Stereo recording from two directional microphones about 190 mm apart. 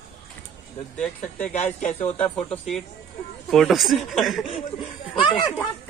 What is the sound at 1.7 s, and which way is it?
Speech, 40° left (ahead or behind).